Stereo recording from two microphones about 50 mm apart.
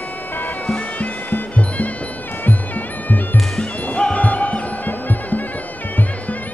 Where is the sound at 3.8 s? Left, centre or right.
Left.